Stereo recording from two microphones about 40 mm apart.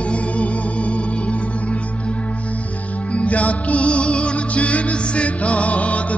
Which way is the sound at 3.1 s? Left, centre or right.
Left.